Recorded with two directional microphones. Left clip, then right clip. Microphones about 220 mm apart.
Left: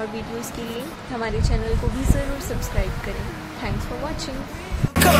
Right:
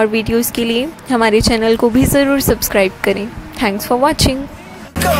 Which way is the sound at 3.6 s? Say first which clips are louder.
Right 17 dB; 45° right (ahead or behind).